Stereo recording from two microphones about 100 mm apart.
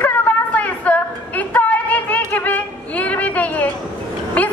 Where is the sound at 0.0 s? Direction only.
15° left (ahead or behind).